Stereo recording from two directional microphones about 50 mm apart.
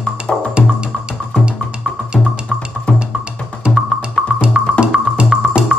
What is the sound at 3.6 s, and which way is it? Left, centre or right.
Music, centre.